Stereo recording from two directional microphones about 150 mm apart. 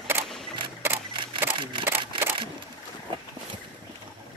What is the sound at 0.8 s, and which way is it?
Camera, 15° right (ahead or behind).